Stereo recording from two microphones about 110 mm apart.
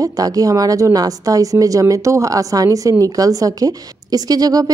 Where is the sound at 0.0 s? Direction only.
35° right (ahead or behind).